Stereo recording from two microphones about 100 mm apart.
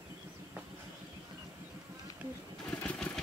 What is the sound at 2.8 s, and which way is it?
Vehicle, 5° left (ahead or behind).